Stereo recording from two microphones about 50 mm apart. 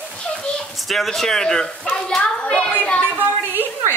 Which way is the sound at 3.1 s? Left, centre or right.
Right.